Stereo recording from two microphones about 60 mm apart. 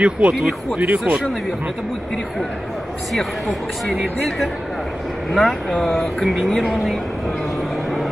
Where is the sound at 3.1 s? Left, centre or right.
Centre.